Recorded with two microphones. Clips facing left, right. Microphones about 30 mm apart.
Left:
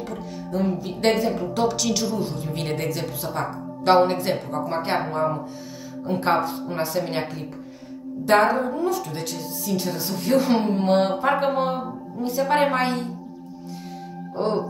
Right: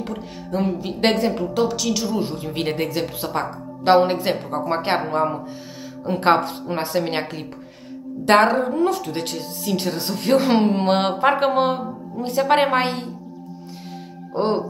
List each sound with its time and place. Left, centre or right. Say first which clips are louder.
0.0 s a woman's voice: right 2 dB; right
1.5 s a woman's voice: right 1 dB; centre
2.1 s a woman's voice: right 3 dB; right
2.4 s a woman's voice: right 3 dB; right
3.8 s a woman's voice: right 2 dB; centre
4.5 s a woman's voice: right 3 dB; right
8.3 s a woman's voice: right 3 dB; right
14.3 s speech: right 3 dB; right